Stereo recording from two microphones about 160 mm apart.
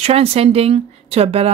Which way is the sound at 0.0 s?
40° right (ahead or behind).